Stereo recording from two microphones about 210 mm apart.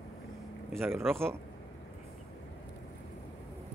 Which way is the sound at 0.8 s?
10° right (ahead or behind).